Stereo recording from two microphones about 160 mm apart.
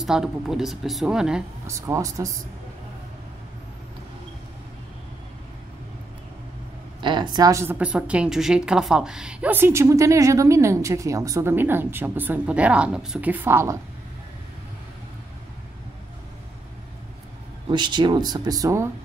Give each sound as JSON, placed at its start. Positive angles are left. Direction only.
{"t": 0.0, "sound": "speech", "side_deg": 0}
{"t": 1.7, "sound": "speech", "side_deg": -20}
{"t": 7.0, "sound": "a woman's voice", "side_deg": -30}
{"t": 17.6, "sound": "speech", "side_deg": -30}